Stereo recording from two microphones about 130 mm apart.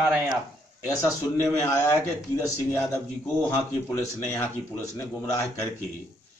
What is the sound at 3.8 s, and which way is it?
Speech, 15° left (ahead or behind).